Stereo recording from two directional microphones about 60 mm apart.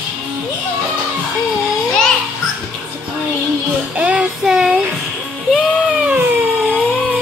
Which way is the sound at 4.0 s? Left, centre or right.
Right.